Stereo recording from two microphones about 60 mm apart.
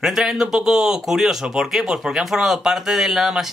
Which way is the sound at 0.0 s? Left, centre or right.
Centre.